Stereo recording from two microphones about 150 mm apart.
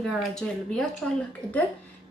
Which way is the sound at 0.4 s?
5° left (ahead or behind).